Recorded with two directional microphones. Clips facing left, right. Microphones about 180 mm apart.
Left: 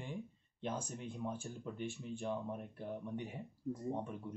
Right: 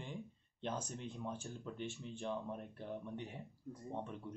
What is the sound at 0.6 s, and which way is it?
Speech, 10° left (ahead or behind).